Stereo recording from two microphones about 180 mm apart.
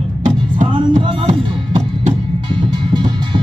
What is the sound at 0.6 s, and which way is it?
Music, 40° right (ahead or behind).